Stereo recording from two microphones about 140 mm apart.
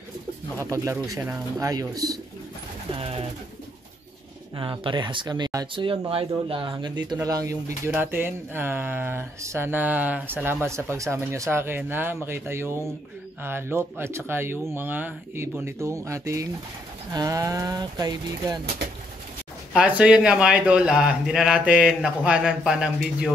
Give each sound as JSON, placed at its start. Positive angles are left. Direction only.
{"t": 1.0, "sound": "speech", "side_deg": -25}
{"t": 3.0, "sound": "bird", "side_deg": -40}
{"t": 4.6, "sound": "speech", "side_deg": -35}
{"t": 5.8, "sound": "a man's voice", "side_deg": -40}
{"t": 19.7, "sound": "a man's voice", "side_deg": -10}